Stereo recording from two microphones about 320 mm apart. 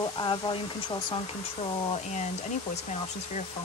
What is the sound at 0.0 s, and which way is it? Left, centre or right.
Speech, centre.